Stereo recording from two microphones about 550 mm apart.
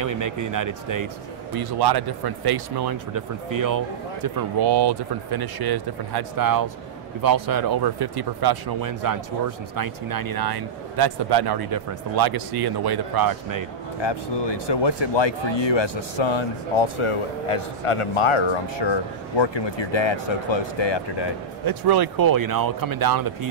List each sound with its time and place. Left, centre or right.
0.0 s speech: right
14.0 s speech: left
21.6 s speech: right